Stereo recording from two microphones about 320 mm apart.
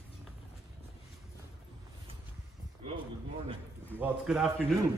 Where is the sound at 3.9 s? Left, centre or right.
Centre.